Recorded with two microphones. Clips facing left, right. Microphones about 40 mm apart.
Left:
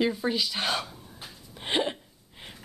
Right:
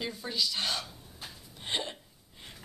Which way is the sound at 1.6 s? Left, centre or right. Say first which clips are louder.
Left 7 dB; left.